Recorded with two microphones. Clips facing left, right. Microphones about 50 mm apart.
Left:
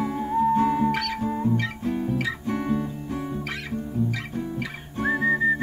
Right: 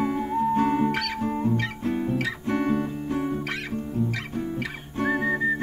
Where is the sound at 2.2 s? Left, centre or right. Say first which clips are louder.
Right 1 dB; right.